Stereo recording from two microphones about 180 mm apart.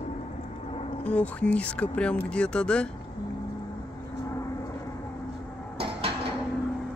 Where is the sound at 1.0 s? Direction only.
10° left (ahead or behind).